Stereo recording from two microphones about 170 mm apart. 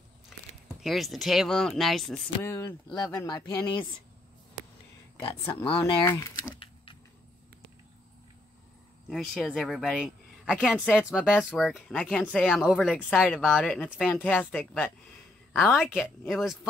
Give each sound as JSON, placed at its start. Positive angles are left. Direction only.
{"t": 0.3, "sound": "a sound", "side_deg": 0}
{"t": 0.7, "sound": "speech", "side_deg": 0}
{"t": 2.4, "sound": "speech", "side_deg": 15}
{"t": 5.5, "sound": "speech", "side_deg": 10}
{"t": 6.5, "sound": "power windows", "side_deg": 30}
{"t": 9.1, "sound": "speech", "side_deg": 0}